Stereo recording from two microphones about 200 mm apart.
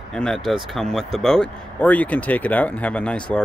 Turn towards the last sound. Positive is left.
turn(degrees=5)  # may be behind; listen again after turning